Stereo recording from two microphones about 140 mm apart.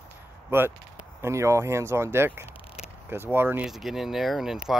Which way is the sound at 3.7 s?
Centre (ahead or behind).